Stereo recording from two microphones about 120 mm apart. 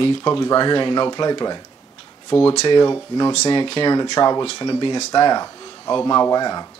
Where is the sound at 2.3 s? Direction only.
45° left (ahead or behind).